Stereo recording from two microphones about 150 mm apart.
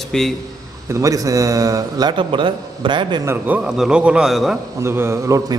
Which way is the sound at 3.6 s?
5° right (ahead or behind).